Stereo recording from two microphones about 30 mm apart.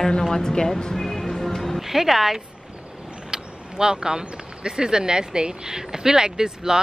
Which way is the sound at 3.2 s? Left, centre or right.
Right.